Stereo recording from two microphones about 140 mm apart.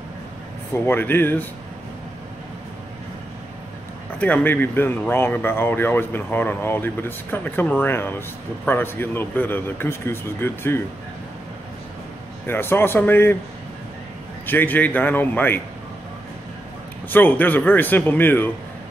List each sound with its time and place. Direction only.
0.8 s speech: 15° left (ahead or behind)
4.2 s speech: 10° left (ahead or behind)
12.4 s speech: 15° left (ahead or behind)
14.4 s speech: 15° left (ahead or behind)
17.1 s speech: 15° left (ahead or behind)